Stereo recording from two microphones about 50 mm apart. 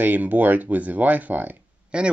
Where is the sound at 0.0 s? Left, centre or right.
Right.